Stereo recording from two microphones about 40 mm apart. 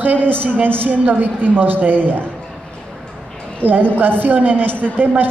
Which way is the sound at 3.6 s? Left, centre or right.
Right.